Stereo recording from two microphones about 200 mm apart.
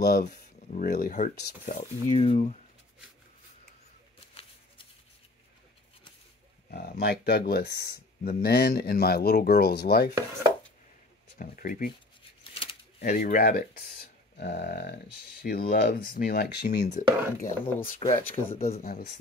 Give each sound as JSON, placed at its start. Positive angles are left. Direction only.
{"t": 0.0, "sound": "speech", "side_deg": 50}
{"t": 6.7, "sound": "speech", "side_deg": 50}
{"t": 11.3, "sound": "speech", "side_deg": 45}
{"t": 12.5, "sound": "a sound", "side_deg": 40}
{"t": 15.4, "sound": "speech", "side_deg": 50}
{"t": 16.9, "sound": "speech", "side_deg": 40}